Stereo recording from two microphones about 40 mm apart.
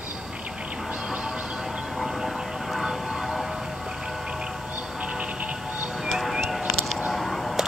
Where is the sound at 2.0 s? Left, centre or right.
Centre.